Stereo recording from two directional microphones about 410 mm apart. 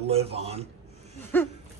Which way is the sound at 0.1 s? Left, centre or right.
Centre.